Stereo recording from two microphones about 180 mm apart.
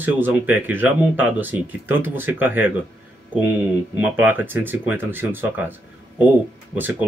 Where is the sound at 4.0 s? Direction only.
10° right (ahead or behind).